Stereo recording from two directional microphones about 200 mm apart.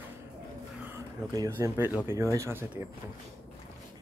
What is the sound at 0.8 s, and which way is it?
Speech, 15° right (ahead or behind).